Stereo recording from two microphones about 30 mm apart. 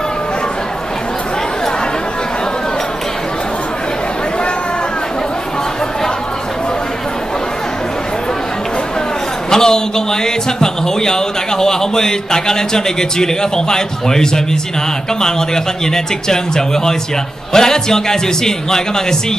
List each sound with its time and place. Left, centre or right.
9.5 s speech: left